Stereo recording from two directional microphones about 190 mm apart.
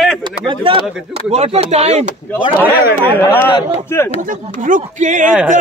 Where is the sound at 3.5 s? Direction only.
15° left (ahead or behind).